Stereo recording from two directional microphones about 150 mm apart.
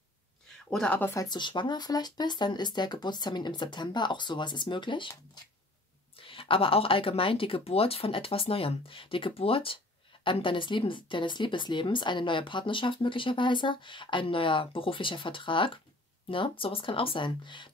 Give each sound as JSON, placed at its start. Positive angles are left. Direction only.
{"t": 0.7, "sound": "speech", "side_deg": 5}
{"t": 1.1, "sound": "a woman's voice", "side_deg": 25}